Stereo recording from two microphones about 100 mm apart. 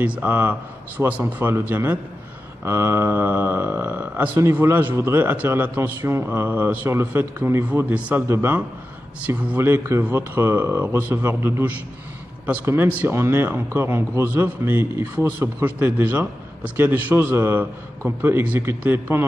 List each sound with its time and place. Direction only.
0.0 s a man's voice: 15° right (ahead or behind)